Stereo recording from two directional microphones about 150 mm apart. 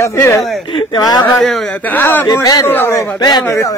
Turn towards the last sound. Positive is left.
turn(degrees=20)  # may be behind; listen again after turning